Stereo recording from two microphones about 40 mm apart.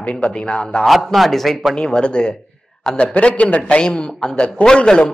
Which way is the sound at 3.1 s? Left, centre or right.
Left.